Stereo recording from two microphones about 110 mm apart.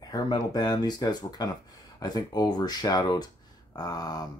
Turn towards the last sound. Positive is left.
turn(degrees=35)  # may be behind; listen again after turning